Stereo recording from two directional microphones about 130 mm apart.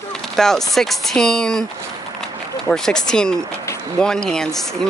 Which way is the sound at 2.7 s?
5° left (ahead or behind).